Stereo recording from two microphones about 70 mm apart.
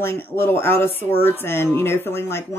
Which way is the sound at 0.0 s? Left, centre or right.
Left.